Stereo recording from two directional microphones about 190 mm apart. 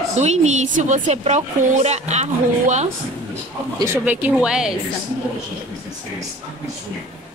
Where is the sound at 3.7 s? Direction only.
15° right (ahead or behind).